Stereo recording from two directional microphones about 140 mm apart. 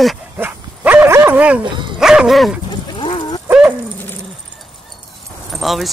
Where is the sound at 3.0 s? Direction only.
35° left (ahead or behind).